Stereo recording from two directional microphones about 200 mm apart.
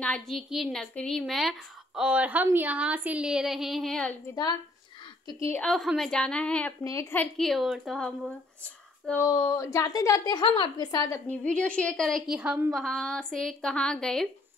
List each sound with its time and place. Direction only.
0.0 s a woman's voice: 5° left (ahead or behind)
5.2 s a woman's voice: 20° left (ahead or behind); by 8.1 s centre (ahead or behind)
9.0 s a woman's voice: 10° left (ahead or behind)